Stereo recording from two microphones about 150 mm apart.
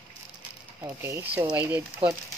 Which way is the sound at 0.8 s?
15° right (ahead or behind).